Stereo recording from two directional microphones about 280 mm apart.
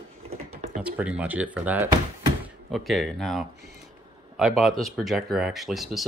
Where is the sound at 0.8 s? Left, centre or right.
Centre.